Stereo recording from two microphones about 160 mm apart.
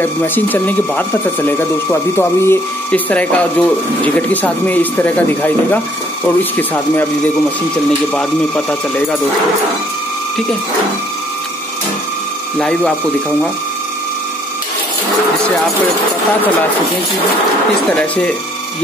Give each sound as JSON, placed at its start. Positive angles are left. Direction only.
{"t": 0.0, "sound": "speech", "side_deg": 10}
{"t": 8.1, "sound": "speech", "side_deg": 10}
{"t": 12.5, "sound": "speech", "side_deg": 5}
{"t": 17.9, "sound": "speech", "side_deg": 5}